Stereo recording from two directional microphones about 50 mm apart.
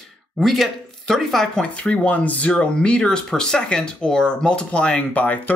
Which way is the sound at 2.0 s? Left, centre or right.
Left.